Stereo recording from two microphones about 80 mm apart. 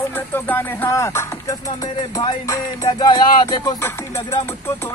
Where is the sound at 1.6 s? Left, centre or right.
Left.